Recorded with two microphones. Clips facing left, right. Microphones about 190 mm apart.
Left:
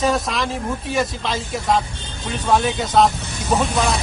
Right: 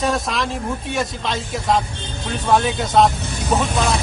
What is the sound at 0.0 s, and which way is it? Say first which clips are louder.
Speech: left 1 dB; centre (ahead or behind).